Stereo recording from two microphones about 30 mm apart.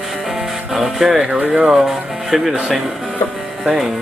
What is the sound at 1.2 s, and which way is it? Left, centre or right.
Speech, right.